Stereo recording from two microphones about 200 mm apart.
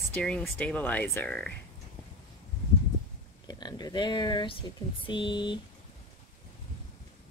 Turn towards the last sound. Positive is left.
turn(degrees=25)  # may be behind; listen again after turning